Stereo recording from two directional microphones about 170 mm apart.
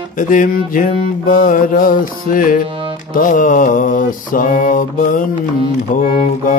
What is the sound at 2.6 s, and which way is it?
Music, 30° right (ahead or behind).